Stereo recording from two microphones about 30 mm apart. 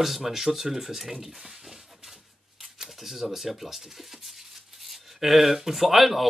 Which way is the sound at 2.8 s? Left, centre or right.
Centre.